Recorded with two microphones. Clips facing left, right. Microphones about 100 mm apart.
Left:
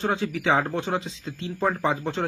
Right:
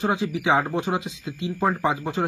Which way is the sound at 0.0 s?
15° right (ahead or behind).